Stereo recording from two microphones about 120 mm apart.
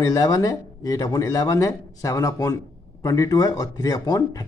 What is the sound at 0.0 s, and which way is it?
Speech, 30° left (ahead or behind).